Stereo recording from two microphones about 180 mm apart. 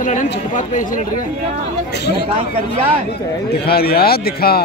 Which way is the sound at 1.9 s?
65° left (ahead or behind).